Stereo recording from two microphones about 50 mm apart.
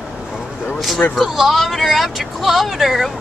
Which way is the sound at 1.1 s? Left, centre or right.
Centre.